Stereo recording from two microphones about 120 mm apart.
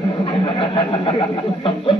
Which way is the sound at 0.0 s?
40° left (ahead or behind).